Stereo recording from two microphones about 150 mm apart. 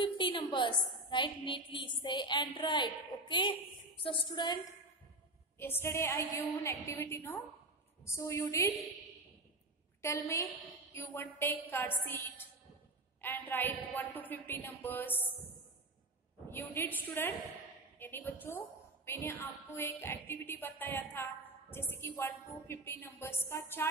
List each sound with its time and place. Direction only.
0.0 s a woman's voice: 30° left (ahead or behind)
5.6 s a woman's voice: 15° left (ahead or behind)
10.9 s a woman's voice: 15° left (ahead or behind)
13.2 s a woman's voice: 15° left (ahead or behind)
16.4 s a woman's voice: 15° left (ahead or behind)